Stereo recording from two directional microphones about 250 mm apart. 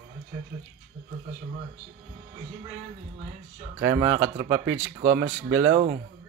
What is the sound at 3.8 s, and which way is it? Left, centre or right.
Speech, centre.